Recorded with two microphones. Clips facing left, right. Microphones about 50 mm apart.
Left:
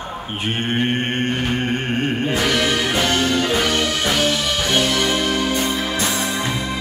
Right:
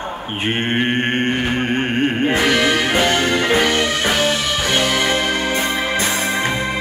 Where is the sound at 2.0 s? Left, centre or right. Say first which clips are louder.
Right 4 dB; right.